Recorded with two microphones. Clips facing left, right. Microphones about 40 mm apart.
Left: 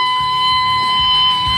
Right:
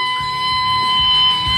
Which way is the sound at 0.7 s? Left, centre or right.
Centre.